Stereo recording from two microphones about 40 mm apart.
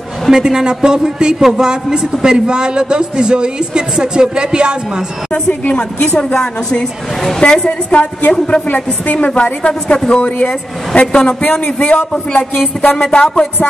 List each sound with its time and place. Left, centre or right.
0.3 s a woman's voice: centre
5.7 s a woman's voice: left
8.6 s a woman's voice: left
9.3 s a woman's voice: left
11.4 s a woman's voice: left
12.1 s a woman's voice: left